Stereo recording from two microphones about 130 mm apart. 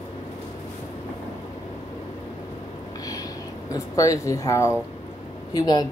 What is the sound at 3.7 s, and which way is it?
Speech, 25° left (ahead or behind).